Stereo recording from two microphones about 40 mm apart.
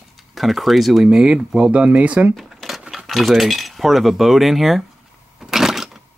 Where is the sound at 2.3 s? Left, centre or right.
Centre.